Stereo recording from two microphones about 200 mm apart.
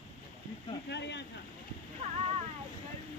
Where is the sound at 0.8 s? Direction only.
60° left (ahead or behind).